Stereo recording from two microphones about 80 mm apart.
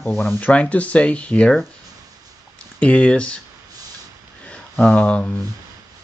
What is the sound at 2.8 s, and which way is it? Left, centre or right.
Speech, centre.